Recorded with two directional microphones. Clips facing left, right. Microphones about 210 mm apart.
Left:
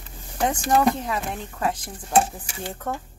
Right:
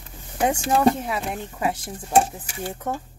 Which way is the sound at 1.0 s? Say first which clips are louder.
Right 1 dB; 10° right (ahead or behind).